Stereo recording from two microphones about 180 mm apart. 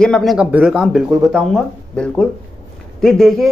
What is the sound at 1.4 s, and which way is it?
Speech, 5° left (ahead or behind).